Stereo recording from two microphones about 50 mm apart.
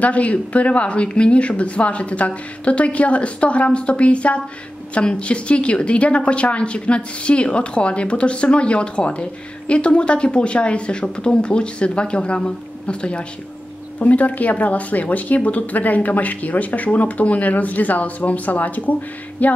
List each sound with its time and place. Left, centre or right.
0.0 s speech: left
13.9 s speech: left